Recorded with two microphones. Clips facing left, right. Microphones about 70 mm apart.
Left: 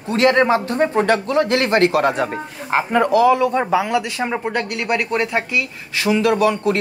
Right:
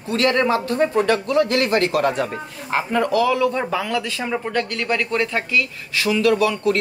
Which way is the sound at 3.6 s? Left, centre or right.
Centre.